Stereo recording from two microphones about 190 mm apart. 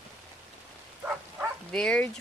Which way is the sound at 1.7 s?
5° left (ahead or behind).